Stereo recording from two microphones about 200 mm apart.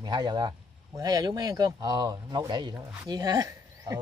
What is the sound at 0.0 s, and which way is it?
Speech, 20° right (ahead or behind).